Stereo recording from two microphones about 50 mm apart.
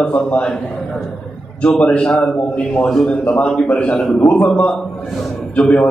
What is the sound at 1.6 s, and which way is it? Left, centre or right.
Speech, centre.